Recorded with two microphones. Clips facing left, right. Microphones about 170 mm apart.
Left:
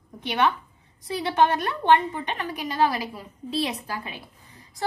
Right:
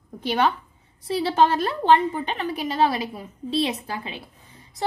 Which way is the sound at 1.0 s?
30° right (ahead or behind).